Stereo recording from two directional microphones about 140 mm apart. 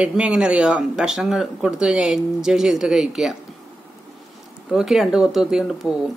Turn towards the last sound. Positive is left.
turn(degrees=0)  # may be behind; listen again after turning